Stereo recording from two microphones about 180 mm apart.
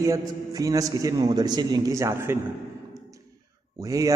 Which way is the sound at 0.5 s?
20° right (ahead or behind).